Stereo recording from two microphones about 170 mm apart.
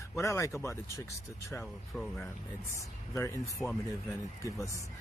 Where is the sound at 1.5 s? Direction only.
5° left (ahead or behind).